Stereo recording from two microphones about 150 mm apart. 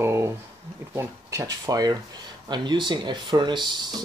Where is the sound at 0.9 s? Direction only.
20° right (ahead or behind).